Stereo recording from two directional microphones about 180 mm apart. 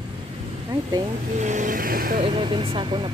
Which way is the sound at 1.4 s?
45° right (ahead or behind).